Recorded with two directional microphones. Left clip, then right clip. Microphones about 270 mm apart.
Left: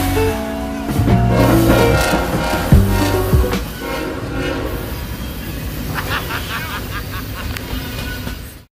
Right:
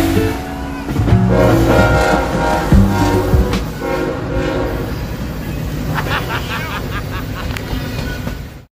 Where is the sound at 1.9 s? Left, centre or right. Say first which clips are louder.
Right 3 dB; left.